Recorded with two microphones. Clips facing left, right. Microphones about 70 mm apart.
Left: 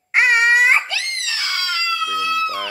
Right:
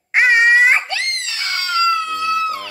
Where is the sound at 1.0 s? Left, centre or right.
Right.